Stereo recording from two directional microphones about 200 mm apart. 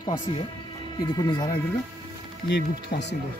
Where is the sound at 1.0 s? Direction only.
20° left (ahead or behind).